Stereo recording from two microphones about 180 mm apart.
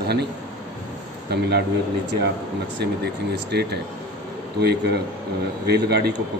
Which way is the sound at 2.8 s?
65° right (ahead or behind).